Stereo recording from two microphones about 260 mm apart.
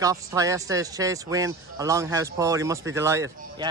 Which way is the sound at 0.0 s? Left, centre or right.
Centre.